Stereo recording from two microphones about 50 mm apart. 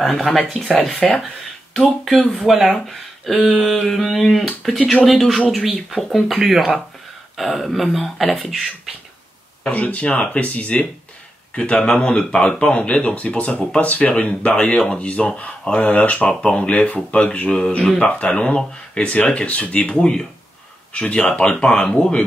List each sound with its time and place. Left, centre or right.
0.0 s speech: centre
9.7 s speech: left
16.3 s speech: centre
16.6 s speech: left